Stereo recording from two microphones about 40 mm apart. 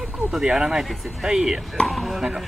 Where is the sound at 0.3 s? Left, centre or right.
Centre.